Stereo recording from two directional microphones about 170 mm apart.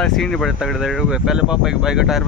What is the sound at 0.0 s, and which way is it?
Speech, 5° left (ahead or behind).